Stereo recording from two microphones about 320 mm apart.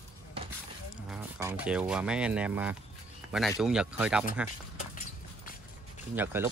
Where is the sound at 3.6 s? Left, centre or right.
Centre.